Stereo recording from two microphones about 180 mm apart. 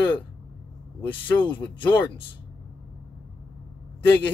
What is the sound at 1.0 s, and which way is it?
Speech, 10° left (ahead or behind).